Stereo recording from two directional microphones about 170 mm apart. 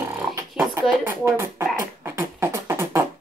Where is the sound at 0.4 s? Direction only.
15° right (ahead or behind).